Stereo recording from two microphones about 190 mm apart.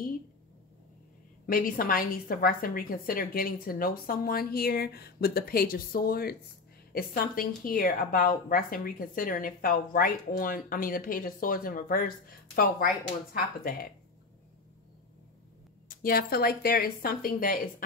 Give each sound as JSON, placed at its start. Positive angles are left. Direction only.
{"t": 1.4, "sound": "a woman's voice", "side_deg": 50}
{"t": 13.3, "sound": "a woman's voice", "side_deg": 50}
{"t": 15.9, "sound": "a woman's voice", "side_deg": 50}